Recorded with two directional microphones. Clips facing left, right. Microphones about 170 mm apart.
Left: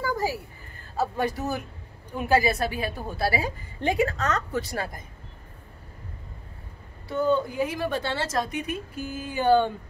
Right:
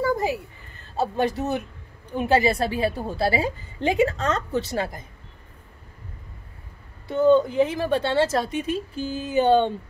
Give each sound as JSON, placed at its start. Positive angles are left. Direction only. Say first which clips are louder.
{"t": 0.0, "sound": "a sound", "louder": "right 4 dB", "side_deg": -25}
{"t": 0.9, "sound": "a woman's voice", "louder": "right 3 dB", "side_deg": -25}
{"t": 7.1, "sound": "a woman's voice", "louder": "right 6 dB", "side_deg": -20}